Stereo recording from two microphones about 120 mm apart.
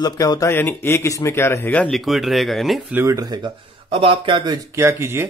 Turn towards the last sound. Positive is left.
turn(degrees=-20)  # may be behind; listen again after turning